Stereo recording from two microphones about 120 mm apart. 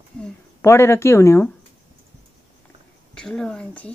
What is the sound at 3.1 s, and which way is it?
Speech, 5° left (ahead or behind).